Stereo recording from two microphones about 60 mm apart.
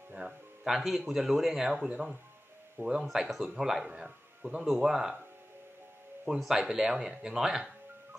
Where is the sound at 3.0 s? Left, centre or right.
Centre.